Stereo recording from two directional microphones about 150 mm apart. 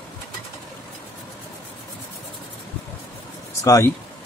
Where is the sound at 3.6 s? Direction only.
20° left (ahead or behind).